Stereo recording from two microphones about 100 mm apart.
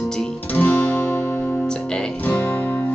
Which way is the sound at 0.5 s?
20° left (ahead or behind).